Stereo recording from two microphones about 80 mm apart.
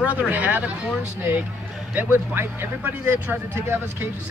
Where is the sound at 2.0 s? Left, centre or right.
Right.